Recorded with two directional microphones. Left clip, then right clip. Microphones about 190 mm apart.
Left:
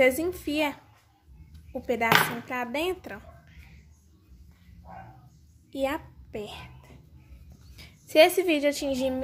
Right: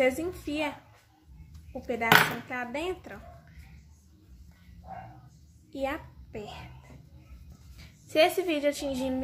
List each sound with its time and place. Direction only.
0.0 s a woman's voice: 50° left (ahead or behind)
5.7 s a woman's voice: 40° left (ahead or behind)
7.7 s a woman's voice: 40° left (ahead or behind)